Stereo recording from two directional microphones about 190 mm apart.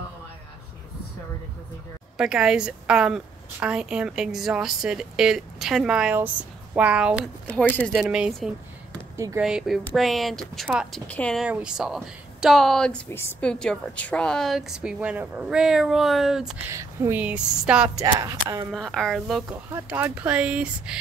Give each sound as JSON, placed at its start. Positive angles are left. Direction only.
{"t": 2.1, "sound": "a woman's voice", "side_deg": -5}
{"t": 7.5, "sound": "a woman's voice", "side_deg": 5}
{"t": 9.1, "sound": "speech", "side_deg": -15}
{"t": 9.4, "sound": "a woman's voice", "side_deg": -5}
{"t": 11.4, "sound": "a woman's voice", "side_deg": -5}
{"t": 16.7, "sound": "speech", "side_deg": -15}
{"t": 17.8, "sound": "speech", "side_deg": -20}
{"t": 18.7, "sound": "a woman's voice", "side_deg": 0}